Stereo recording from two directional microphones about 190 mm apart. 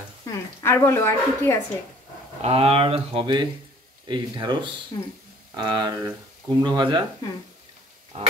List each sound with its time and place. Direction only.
0.3 s speech: 15° left (ahead or behind)
2.4 s speech: 30° right (ahead or behind)
5.6 s speech: 25° right (ahead or behind)